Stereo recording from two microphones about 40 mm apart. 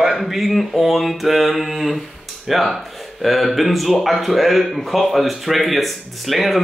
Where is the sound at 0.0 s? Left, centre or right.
Centre.